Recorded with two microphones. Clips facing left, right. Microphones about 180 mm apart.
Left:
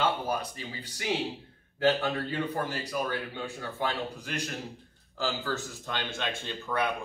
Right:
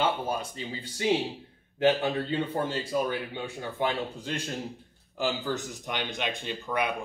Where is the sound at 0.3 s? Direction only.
25° right (ahead or behind).